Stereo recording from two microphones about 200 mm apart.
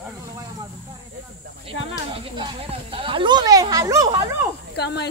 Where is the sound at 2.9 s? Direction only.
25° right (ahead or behind).